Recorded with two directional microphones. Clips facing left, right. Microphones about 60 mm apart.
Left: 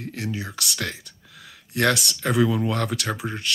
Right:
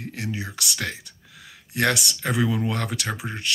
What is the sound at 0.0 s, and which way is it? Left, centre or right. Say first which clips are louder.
Speech: left 1 dB; centre.